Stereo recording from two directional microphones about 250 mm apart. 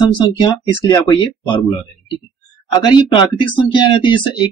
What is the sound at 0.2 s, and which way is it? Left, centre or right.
Speech, centre.